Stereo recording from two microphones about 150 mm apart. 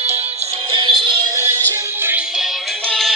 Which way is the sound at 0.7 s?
35° right (ahead or behind).